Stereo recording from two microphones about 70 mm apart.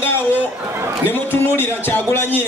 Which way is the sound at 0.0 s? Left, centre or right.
Left.